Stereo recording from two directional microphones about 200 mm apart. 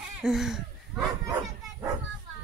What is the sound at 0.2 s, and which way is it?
Speech, centre (ahead or behind).